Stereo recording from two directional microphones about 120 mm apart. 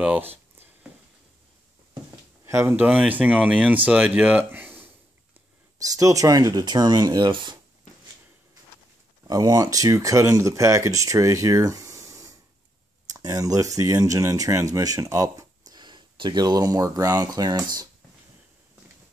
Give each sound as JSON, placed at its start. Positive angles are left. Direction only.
{"t": 0.0, "sound": "speech", "side_deg": -10}
{"t": 2.4, "sound": "speech", "side_deg": -20}
{"t": 5.9, "sound": "speech", "side_deg": -30}
{"t": 9.3, "sound": "speech", "side_deg": -30}